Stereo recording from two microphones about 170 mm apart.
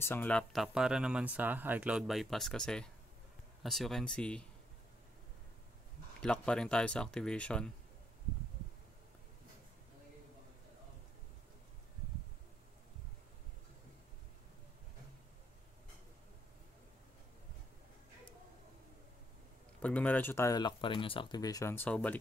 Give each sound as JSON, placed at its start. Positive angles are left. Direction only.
{"t": 0.0, "sound": "speech", "side_deg": 10}
{"t": 6.2, "sound": "speech", "side_deg": 5}
{"t": 19.8, "sound": "speech", "side_deg": 10}